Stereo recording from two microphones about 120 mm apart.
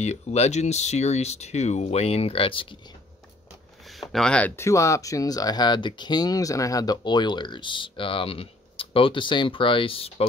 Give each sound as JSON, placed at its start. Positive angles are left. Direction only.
{"t": 0.0, "sound": "speech", "side_deg": 65}
{"t": 3.9, "sound": "speech", "side_deg": 0}
{"t": 4.6, "sound": "speech", "side_deg": 25}